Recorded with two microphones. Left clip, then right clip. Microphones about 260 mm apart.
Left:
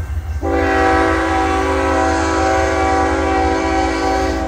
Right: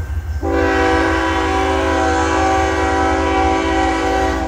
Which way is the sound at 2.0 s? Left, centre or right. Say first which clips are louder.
Even; centre.